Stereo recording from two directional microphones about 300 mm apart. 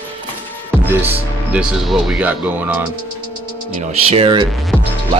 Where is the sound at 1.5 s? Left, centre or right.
Centre.